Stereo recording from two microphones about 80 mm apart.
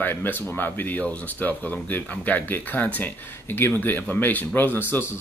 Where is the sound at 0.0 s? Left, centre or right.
Left.